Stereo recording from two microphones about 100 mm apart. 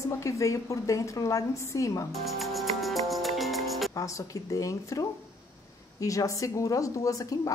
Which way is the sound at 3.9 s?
35° left (ahead or behind).